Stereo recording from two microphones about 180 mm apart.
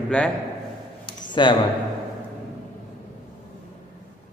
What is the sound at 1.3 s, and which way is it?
Speech, 25° left (ahead or behind).